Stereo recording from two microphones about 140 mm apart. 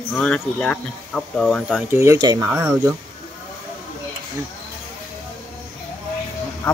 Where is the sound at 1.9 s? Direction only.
15° right (ahead or behind).